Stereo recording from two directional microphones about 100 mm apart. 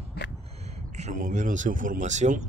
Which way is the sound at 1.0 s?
90° right.